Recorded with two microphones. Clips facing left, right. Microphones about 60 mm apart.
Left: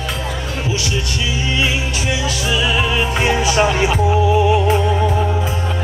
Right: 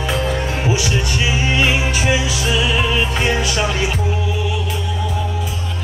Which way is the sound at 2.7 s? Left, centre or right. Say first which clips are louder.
Left 1 dB; centre.